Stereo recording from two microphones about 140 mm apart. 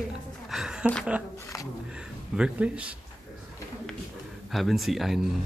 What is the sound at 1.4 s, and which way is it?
Speech, 25° left (ahead or behind).